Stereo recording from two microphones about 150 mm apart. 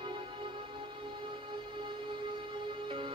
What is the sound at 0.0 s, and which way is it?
Music, 35° right (ahead or behind).